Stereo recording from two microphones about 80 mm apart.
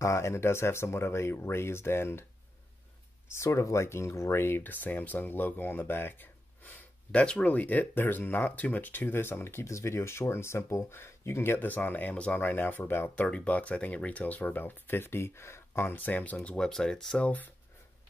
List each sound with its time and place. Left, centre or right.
0.0 s speech: left
3.3 s speech: left; by 17.3 s centre